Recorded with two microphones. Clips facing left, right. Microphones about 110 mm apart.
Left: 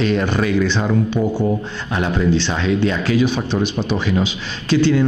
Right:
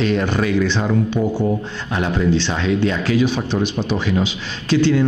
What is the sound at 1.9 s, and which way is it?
Speech, 25° left (ahead or behind).